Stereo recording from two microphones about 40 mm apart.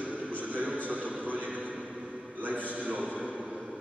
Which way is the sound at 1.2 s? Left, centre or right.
Right.